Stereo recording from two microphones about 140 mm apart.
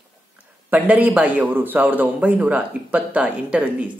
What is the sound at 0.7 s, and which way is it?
A man's voice, 10° right (ahead or behind).